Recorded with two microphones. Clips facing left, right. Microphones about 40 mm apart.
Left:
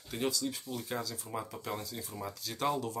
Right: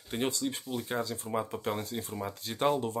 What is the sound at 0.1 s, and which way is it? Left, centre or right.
Speech, right.